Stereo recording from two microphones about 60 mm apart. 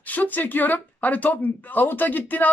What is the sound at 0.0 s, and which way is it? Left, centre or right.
Speech, left.